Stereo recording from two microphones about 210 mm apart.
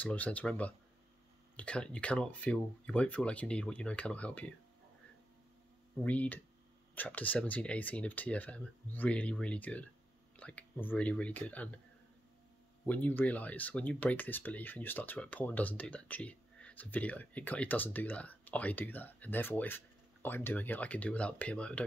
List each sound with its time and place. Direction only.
0.0 s speech: 5° left (ahead or behind)
6.0 s speech: 5° left (ahead or behind)
12.8 s speech: 10° left (ahead or behind)